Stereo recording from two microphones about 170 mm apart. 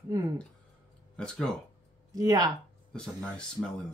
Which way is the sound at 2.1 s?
20° right (ahead or behind).